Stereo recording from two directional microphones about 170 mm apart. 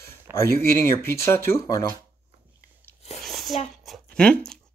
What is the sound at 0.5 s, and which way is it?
Speech, 15° left (ahead or behind).